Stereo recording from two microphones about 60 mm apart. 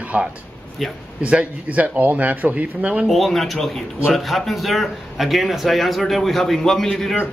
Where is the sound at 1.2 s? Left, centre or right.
Right.